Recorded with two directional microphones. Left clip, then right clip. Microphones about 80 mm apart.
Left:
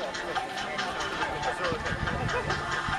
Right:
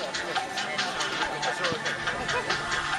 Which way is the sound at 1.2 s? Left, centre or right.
Right.